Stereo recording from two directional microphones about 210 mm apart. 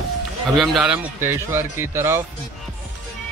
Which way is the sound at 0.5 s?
Centre (ahead or behind).